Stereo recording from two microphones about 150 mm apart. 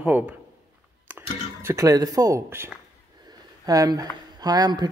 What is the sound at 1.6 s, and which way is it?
Speech, 20° right (ahead or behind).